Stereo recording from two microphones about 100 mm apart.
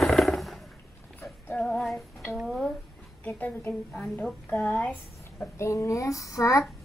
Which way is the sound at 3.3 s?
15° left (ahead or behind).